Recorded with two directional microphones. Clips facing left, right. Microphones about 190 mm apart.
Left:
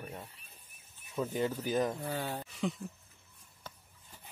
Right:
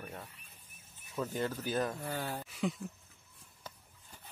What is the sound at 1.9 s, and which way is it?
Speech, centre (ahead or behind).